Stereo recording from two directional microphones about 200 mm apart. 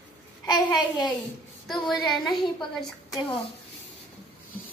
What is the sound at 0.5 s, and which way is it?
Speech, 20° left (ahead or behind).